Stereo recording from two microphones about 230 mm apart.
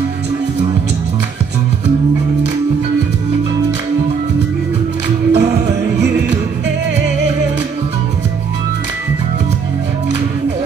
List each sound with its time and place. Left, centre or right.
5.3 s music: right